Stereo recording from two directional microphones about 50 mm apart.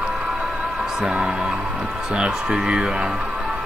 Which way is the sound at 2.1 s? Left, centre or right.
Centre.